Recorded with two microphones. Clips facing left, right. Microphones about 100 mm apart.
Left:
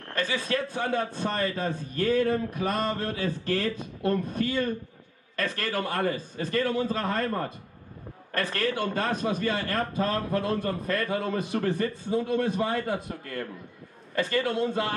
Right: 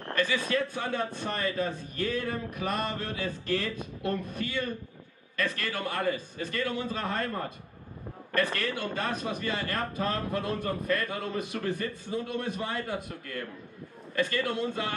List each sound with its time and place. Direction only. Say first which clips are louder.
0.1 s a man's voice: even; 35° left (ahead or behind)